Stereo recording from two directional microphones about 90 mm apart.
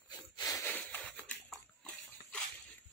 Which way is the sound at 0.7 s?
20° left (ahead or behind).